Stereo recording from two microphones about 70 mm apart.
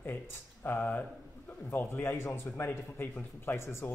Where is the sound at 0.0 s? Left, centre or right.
Left.